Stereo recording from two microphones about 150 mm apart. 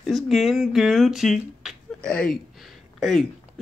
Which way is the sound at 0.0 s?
Centre (ahead or behind).